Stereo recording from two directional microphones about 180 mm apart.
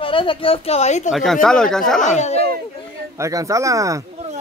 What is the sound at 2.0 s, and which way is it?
Speech, 40° left (ahead or behind).